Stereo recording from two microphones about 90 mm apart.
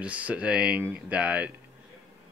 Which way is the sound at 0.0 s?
15° right (ahead or behind).